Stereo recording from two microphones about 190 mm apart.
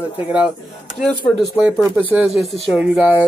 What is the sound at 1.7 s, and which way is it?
Speech, centre (ahead or behind).